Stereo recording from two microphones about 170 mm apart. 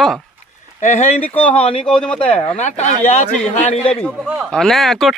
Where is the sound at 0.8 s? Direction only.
40° left (ahead or behind).